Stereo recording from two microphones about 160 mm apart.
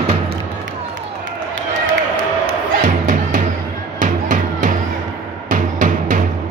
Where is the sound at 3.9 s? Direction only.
55° right (ahead or behind).